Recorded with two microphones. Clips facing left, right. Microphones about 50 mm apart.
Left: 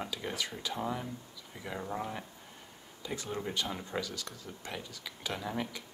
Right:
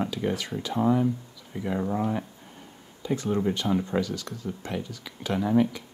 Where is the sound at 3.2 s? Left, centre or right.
Centre.